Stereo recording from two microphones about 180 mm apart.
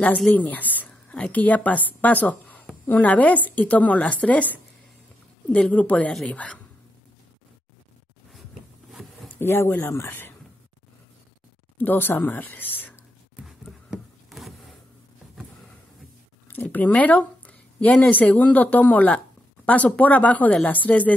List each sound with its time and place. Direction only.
0.0 s a woman's voice: 10° left (ahead or behind)
9.0 s a sound: centre (ahead or behind)
9.3 s speech: 10° left (ahead or behind)
11.8 s speech: 10° left (ahead or behind)
13.4 s a sound: centre (ahead or behind)
16.4 s speech: 10° left (ahead or behind)